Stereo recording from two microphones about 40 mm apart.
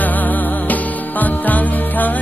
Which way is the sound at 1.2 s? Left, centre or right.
Left.